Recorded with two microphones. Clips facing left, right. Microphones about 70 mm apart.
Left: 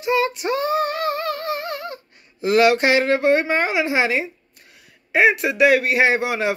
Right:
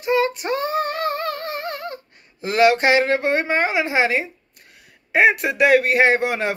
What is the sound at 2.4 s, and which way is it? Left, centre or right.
A man's voice, right.